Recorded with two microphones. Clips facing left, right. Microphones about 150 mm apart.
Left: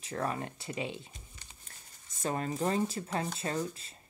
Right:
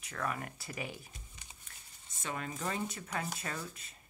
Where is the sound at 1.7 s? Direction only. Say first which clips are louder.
Left 2 dB; 40° left (ahead or behind).